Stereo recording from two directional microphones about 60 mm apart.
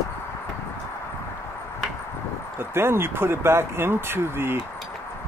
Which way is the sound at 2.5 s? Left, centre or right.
Right.